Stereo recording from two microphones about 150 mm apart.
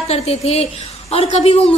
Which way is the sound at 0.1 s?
45° left (ahead or behind).